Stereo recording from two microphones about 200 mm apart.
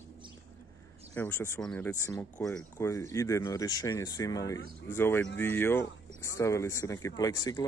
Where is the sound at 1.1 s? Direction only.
10° left (ahead or behind).